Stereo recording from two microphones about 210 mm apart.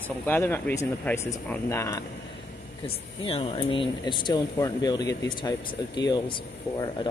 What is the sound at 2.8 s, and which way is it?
Speech, 25° left (ahead or behind).